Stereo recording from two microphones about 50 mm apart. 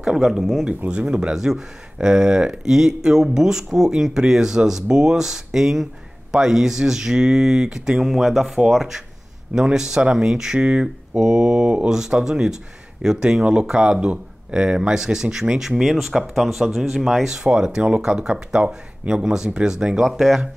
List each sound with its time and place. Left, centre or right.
0.0 s speech: centre
0.8 s speech: centre
8.1 s speech: centre
15.8 s speech: centre
20.0 s speech: centre